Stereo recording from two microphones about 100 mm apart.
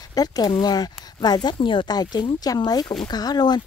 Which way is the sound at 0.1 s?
40° left (ahead or behind).